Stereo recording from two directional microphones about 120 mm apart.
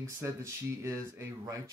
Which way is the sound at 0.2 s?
25° right (ahead or behind).